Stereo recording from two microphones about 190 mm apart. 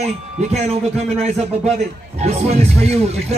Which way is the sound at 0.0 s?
35° right (ahead or behind).